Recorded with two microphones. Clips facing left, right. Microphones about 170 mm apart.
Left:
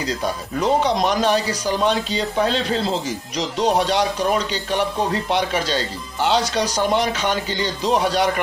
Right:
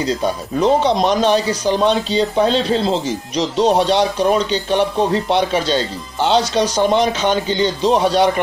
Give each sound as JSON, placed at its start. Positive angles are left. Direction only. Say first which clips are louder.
{"t": 0.6, "sound": "speech", "louder": "right 4 dB", "side_deg": -25}